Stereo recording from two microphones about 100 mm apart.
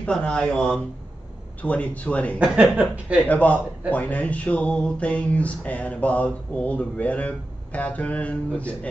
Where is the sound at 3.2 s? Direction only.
15° left (ahead or behind).